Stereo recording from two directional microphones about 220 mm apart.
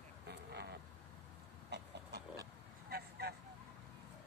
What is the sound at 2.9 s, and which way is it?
Vehicle, 45° right (ahead or behind).